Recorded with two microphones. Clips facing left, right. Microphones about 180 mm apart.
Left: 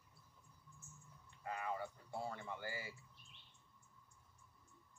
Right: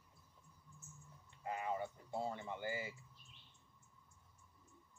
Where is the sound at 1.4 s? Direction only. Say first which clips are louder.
Right 2 dB; 20° right (ahead or behind).